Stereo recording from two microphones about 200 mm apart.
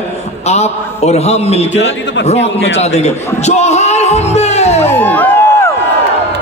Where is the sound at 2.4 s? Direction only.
60° left (ahead or behind).